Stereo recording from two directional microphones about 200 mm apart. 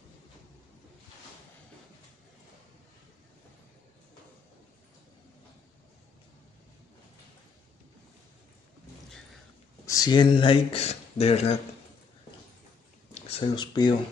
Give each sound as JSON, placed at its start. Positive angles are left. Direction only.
{"t": 9.8, "sound": "speech", "side_deg": 20}
{"t": 13.1, "sound": "speech", "side_deg": 25}